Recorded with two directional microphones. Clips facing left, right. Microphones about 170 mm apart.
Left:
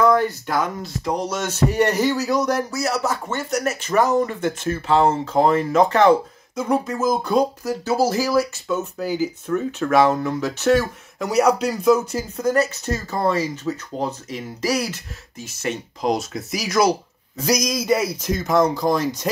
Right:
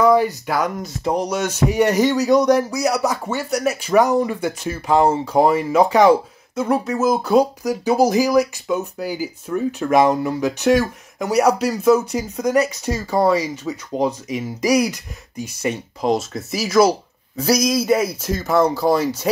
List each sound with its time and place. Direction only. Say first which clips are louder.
0.0 s speech: right 2 dB; 5° right (ahead or behind)
16.0 s speech: right 3 dB; centre (ahead or behind)